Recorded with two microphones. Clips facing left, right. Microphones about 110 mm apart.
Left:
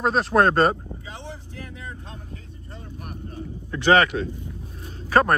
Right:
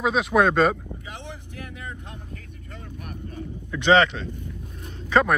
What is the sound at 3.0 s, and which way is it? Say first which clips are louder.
Vehicle: even; 45° left (ahead or behind).